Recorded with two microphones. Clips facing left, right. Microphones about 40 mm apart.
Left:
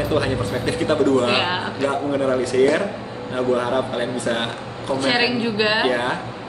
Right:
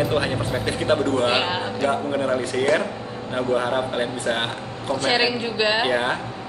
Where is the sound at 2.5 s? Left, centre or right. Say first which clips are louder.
Left 8 dB; centre.